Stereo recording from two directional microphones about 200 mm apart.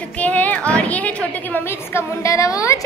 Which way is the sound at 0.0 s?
5° left (ahead or behind).